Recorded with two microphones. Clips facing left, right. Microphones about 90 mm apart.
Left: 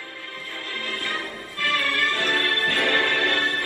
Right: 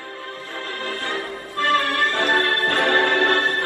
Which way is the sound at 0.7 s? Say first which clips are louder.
Right 3 dB; 30° right (ahead or behind).